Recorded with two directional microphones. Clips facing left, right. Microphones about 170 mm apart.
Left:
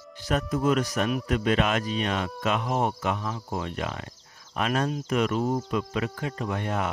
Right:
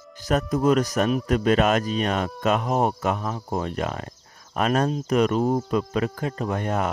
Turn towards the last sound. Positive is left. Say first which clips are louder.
# right 4 dB
turn(degrees=-40)  # may be behind; listen again after turning